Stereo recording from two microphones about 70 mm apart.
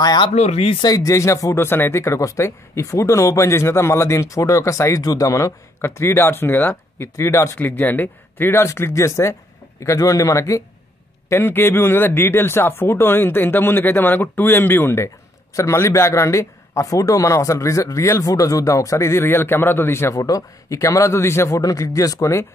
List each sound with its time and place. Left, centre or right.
0.8 s a man's voice: left
1.6 s a man's voice: left
5.8 s speech: left
7.5 s a man's voice: left
11.2 s speech: left
15.5 s a man's voice: left
20.2 s a man's voice: left
21.5 s speech: left